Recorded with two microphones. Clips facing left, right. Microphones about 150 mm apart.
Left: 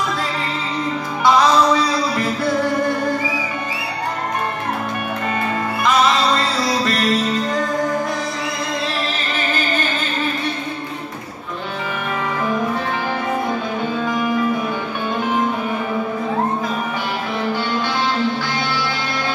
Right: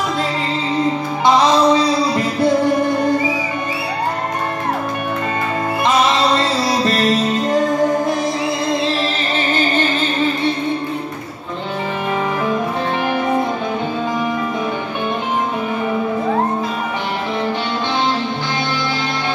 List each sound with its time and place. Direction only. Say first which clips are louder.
1.2 s music: right 1 dB; 25° right (ahead or behind)
5.9 s music: right 1 dB; 25° right (ahead or behind)
9.3 s music: right 4 dB; 25° right (ahead or behind)